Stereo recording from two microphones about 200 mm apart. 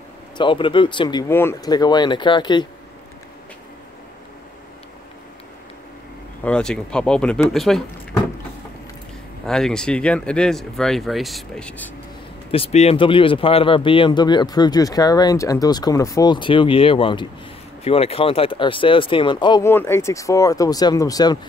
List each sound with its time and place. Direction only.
0.4 s speech: 25° left (ahead or behind)
6.4 s speech: 5° left (ahead or behind)
9.5 s speech: 5° left (ahead or behind)
12.4 s speech: 30° left (ahead or behind)